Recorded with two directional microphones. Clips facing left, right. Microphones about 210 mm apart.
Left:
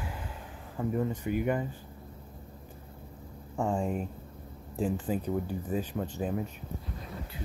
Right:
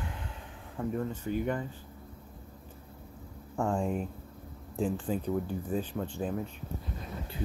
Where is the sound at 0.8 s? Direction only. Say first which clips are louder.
Left 2 dB; 10° left (ahead or behind).